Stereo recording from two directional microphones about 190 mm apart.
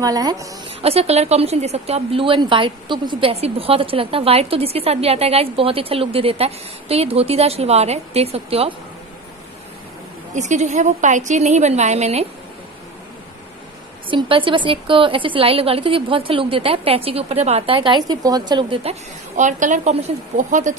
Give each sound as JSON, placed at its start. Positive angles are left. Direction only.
{"t": 0.0, "sound": "a woman's voice", "side_deg": -20}
{"t": 10.3, "sound": "a woman's voice", "side_deg": -40}
{"t": 14.1, "sound": "a woman's voice", "side_deg": -25}